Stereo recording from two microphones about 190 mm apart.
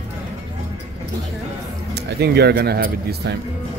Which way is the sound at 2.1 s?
60° right (ahead or behind).